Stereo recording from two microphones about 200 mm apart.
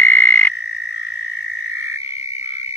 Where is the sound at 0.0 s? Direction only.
10° left (ahead or behind).